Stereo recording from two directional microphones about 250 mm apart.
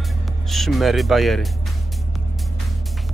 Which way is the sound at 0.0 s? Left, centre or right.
Centre.